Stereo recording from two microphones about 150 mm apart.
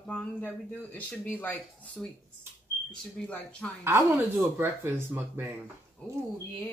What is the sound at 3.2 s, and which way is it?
Speech, 5° left (ahead or behind).